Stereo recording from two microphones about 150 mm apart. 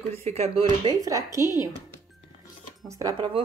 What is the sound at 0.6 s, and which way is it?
Speech, 30° right (ahead or behind).